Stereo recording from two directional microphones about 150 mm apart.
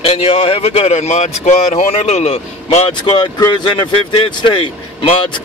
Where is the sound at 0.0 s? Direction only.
40° left (ahead or behind).